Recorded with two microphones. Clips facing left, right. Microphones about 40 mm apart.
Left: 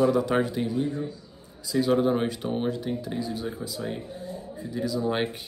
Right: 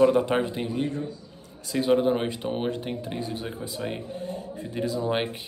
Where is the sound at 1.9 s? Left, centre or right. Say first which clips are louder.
Even; centre.